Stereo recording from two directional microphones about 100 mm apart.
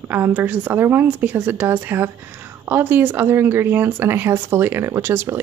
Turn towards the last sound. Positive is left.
turn(degrees=-25)  # may be behind; listen again after turning